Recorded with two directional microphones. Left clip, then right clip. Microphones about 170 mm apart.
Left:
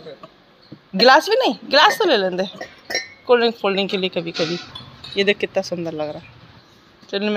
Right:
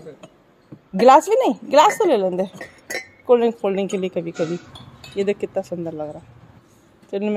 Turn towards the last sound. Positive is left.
turn(degrees=-15)  # may be behind; listen again after turning